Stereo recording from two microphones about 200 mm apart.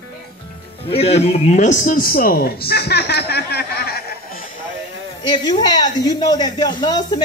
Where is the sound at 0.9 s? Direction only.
30° left (ahead or behind); by 4.0 s 50° left (ahead or behind).